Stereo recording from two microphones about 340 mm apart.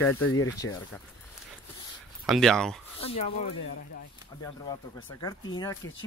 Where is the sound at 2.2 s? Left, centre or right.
Centre.